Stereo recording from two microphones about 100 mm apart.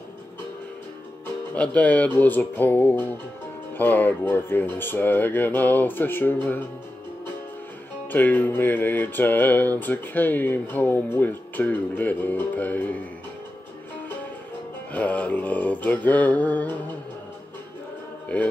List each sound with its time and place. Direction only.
1.5 s music: 15° left (ahead or behind)
3.7 s speech: 20° left (ahead or behind)
8.1 s speech: 20° left (ahead or behind)
14.9 s music: 15° left (ahead or behind)
18.3 s music: 15° left (ahead or behind)